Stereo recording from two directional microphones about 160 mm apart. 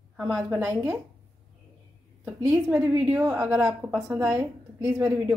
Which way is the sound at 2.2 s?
10° right (ahead or behind).